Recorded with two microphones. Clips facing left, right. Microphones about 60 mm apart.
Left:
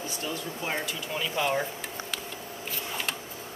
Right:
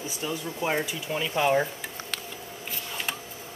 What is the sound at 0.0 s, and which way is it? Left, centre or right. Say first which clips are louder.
Speech: right 2 dB; centre.